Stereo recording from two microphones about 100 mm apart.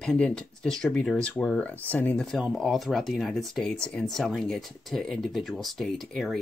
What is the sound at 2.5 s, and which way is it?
Speech, centre (ahead or behind).